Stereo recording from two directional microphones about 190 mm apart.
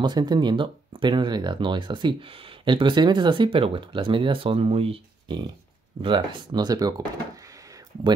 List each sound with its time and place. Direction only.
0.0 s speech: 25° right (ahead or behind)